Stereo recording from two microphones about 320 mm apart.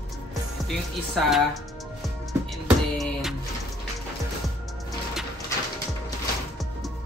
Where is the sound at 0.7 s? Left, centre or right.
Centre.